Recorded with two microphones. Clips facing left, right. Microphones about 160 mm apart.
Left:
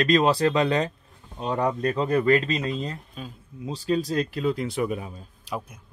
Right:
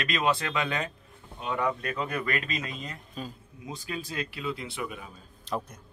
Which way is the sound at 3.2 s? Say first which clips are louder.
Even; centre (ahead or behind).